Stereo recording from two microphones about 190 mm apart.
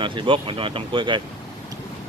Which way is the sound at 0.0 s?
25° right (ahead or behind).